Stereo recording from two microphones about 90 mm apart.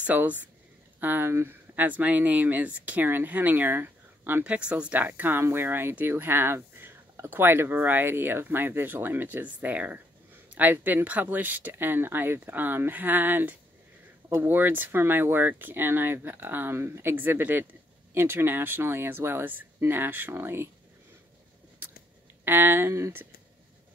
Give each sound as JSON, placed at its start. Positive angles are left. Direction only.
{"t": 0.0, "sound": "speech", "side_deg": -20}
{"t": 22.4, "sound": "speech", "side_deg": -25}